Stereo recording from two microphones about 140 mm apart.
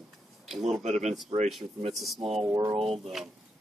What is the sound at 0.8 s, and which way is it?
Speech, 55° right (ahead or behind).